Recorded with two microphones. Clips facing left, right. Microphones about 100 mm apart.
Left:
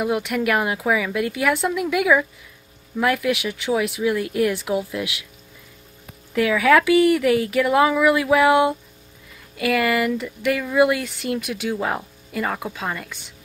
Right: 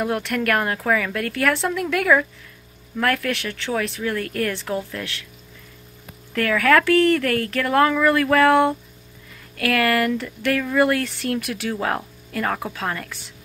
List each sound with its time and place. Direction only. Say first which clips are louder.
0.0 s speech: left 1 dB; 5° left (ahead or behind)
6.3 s speech: left 1 dB; 10° left (ahead or behind)